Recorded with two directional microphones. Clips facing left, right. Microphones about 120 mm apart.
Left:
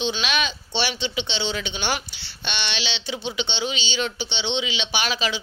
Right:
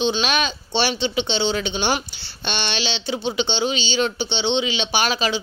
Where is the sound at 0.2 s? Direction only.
40° right (ahead or behind).